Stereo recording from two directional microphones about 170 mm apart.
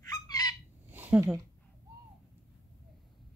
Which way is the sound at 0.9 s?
10° right (ahead or behind).